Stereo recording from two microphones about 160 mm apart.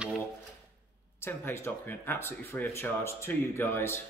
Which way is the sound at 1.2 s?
15° left (ahead or behind).